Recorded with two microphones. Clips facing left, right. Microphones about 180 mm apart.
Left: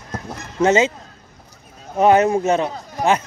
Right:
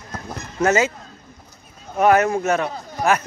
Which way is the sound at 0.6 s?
25° left (ahead or behind).